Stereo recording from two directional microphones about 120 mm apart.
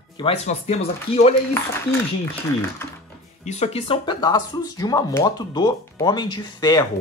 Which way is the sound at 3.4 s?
70° left (ahead or behind).